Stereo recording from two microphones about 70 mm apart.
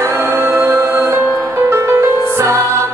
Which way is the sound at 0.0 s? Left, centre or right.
Right.